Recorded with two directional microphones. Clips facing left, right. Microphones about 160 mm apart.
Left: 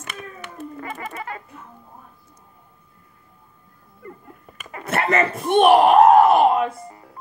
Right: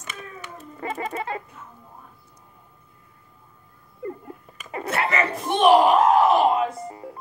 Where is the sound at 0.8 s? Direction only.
25° right (ahead or behind).